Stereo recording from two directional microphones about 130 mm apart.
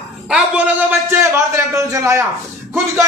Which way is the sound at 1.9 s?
25° right (ahead or behind).